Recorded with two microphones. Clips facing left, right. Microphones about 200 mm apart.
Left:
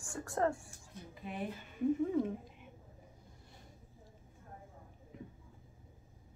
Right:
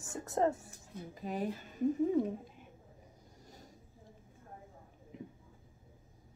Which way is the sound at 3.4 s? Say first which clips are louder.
Right 6 dB; 40° right (ahead or behind).